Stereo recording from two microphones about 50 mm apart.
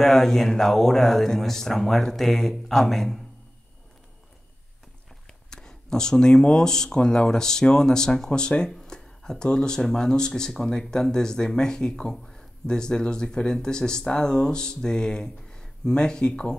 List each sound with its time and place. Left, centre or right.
0.0 s speech: centre
5.2 s speech: centre